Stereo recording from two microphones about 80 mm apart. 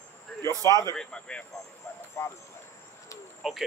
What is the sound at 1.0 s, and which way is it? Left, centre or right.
Speech, centre.